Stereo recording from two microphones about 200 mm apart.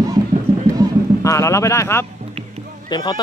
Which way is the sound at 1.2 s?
15° left (ahead or behind).